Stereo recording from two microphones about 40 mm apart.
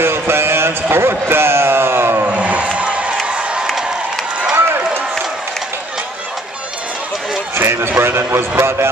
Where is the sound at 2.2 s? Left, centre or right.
Right.